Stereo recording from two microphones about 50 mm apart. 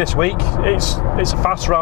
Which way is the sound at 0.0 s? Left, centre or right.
Centre.